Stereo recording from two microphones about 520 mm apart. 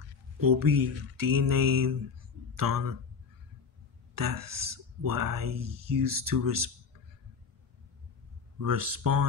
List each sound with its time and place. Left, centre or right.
0.5 s speech: right
4.1 s speech: right
8.5 s speech: right